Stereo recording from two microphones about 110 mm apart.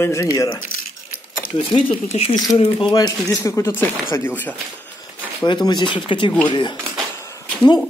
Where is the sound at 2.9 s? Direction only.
30° left (ahead or behind).